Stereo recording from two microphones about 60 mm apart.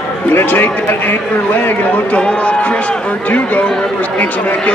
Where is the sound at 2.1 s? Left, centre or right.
Centre.